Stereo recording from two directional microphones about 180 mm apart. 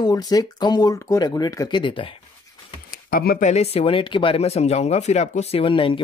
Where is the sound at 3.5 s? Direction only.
35° left (ahead or behind).